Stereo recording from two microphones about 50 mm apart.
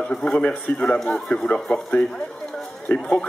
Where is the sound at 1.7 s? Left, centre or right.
Left.